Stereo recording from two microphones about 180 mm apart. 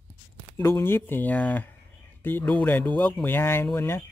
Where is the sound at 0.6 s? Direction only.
15° left (ahead or behind).